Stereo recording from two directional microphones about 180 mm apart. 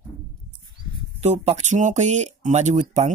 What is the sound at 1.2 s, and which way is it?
Speech, 40° right (ahead or behind).